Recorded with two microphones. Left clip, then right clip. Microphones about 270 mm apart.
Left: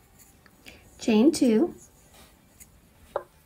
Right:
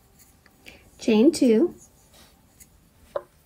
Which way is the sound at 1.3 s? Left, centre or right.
Centre.